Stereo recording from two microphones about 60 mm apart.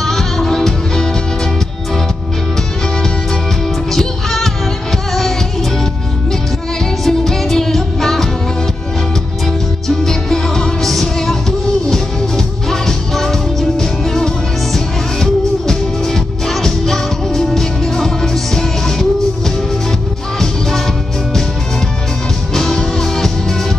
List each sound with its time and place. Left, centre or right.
0.0 s music: centre
3.9 s music: centre
7.1 s music: centre
9.8 s music: centre
22.5 s music: centre